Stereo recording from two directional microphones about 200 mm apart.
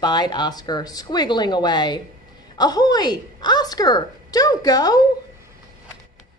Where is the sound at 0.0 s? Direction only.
20° left (ahead or behind).